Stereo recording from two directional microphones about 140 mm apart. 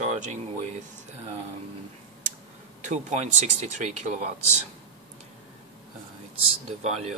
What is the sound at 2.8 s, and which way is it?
Speech, 60° right (ahead or behind).